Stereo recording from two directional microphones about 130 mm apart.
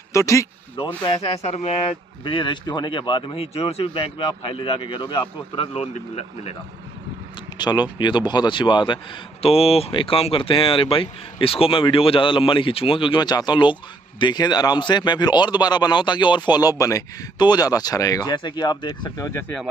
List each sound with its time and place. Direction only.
0.1 s speech: 25° left (ahead or behind)
1.4 s speech: 55° left (ahead or behind)
2.2 s speech: 35° left (ahead or behind)
7.5 s speech: 35° left (ahead or behind)